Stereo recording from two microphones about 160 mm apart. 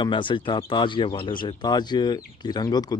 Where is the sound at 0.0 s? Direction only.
30° left (ahead or behind).